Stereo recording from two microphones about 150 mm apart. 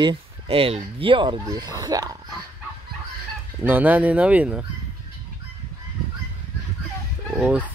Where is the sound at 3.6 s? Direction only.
10° right (ahead or behind).